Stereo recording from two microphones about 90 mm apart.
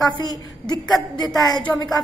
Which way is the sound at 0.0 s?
50° left (ahead or behind).